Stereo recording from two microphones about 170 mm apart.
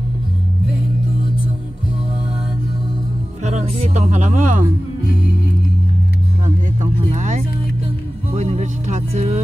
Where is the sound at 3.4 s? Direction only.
45° right (ahead or behind).